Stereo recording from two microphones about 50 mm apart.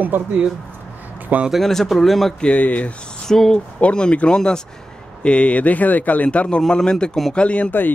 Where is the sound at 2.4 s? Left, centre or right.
Left.